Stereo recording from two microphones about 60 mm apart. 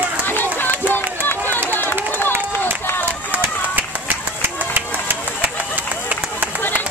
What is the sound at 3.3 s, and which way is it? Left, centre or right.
Run, right.